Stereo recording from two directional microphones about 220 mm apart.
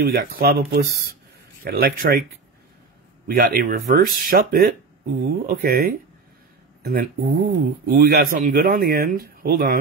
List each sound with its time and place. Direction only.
0.0 s speech: 40° right (ahead or behind)
3.3 s speech: 40° right (ahead or behind)
6.8 s speech: 45° right (ahead or behind)